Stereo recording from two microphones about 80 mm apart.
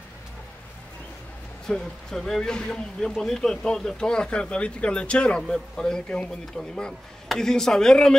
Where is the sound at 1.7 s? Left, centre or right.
Centre.